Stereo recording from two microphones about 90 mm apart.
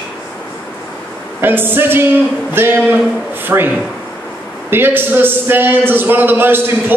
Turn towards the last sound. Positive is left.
turn(degrees=-25)  # may be behind; listen again after turning